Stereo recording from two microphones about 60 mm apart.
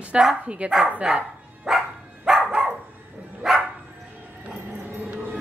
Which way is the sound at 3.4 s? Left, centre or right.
Centre.